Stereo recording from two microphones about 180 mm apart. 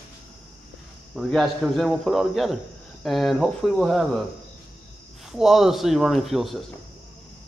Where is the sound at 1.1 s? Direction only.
Centre (ahead or behind).